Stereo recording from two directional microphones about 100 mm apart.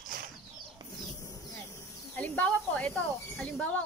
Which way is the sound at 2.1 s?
15° left (ahead or behind).